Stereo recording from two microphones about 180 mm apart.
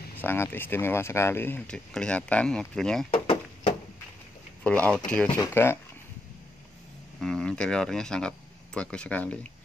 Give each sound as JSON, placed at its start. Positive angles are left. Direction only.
{"t": 0.2, "sound": "speech", "side_deg": 10}
{"t": 3.1, "sound": "a sound", "side_deg": 30}
{"t": 4.6, "sound": "speech", "side_deg": 5}
{"t": 7.2, "sound": "speech", "side_deg": 0}